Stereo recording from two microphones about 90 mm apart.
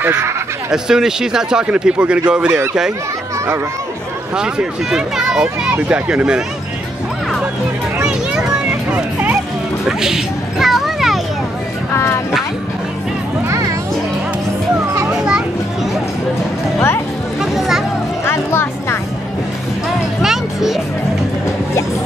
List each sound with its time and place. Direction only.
0.0 s speech: 20° right (ahead or behind)
0.7 s speech: 5° right (ahead or behind)
4.4 s speech: 5° right (ahead or behind)
8.9 s vehicle: 15° right (ahead or behind)
9.8 s music: 5° right (ahead or behind)
11.9 s a sound: 25° left (ahead or behind)
13.5 s music: 35° right (ahead or behind)
15.0 s children playing: 10° right (ahead or behind)
17.4 s a sound: 5° right (ahead or behind)
18.2 s music: 25° left (ahead or behind)
20.2 s music: 5° right (ahead or behind)